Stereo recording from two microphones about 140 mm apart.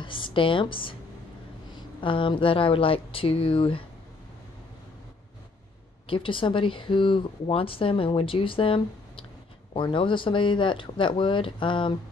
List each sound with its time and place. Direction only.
0.0 s a woman's voice: 35° left (ahead or behind)
6.0 s speech: 40° left (ahead or behind)